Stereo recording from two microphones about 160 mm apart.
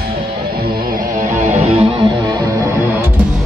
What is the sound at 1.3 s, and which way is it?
Music, 50° right (ahead or behind).